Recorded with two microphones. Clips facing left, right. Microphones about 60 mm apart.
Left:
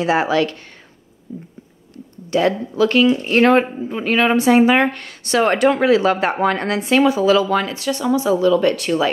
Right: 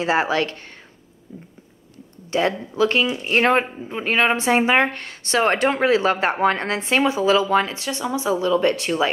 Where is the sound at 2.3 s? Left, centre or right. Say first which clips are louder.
Left 4 dB; right.